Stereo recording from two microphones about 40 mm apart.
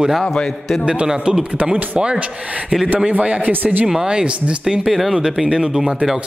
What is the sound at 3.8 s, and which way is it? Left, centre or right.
Speech, centre.